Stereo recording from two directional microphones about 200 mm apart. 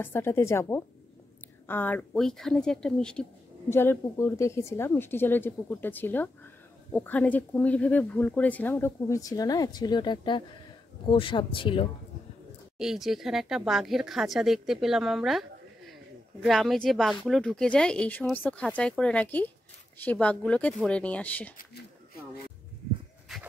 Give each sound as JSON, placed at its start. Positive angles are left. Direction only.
{"t": 0.0, "sound": "a woman's voice", "side_deg": 10}
{"t": 12.7, "sound": "speech", "side_deg": -5}
{"t": 16.4, "sound": "a woman's voice", "side_deg": 0}